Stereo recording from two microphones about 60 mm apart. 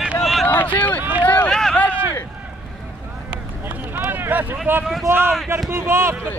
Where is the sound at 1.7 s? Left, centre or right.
Left.